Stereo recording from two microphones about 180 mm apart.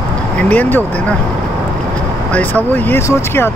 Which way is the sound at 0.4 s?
10° left (ahead or behind).